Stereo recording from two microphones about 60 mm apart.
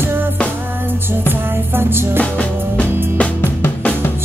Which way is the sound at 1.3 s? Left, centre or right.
Right.